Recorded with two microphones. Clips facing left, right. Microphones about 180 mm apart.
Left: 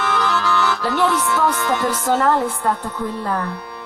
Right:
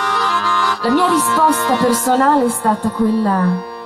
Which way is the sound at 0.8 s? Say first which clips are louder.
Right 8 dB; 35° right (ahead or behind).